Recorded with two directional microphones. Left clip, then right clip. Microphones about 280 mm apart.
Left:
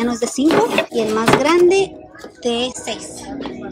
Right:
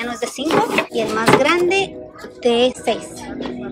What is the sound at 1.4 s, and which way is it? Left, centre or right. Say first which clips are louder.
Speech: left 2 dB; centre.